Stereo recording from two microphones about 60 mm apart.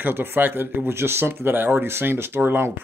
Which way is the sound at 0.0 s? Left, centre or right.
Right.